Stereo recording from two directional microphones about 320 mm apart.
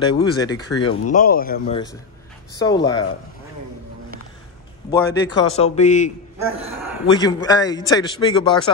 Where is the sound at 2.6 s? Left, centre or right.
Centre.